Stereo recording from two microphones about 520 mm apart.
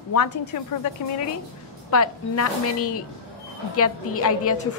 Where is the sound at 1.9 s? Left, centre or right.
Left.